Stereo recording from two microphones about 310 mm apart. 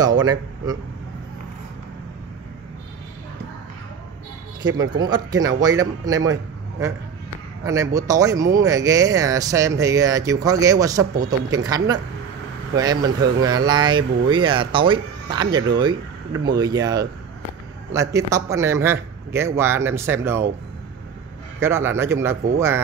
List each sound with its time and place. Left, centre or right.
0.0 s speech: centre
4.9 s speech: centre
21.5 s speech: centre